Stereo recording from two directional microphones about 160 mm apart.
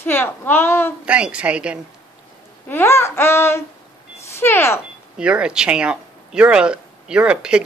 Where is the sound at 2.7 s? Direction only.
15° left (ahead or behind).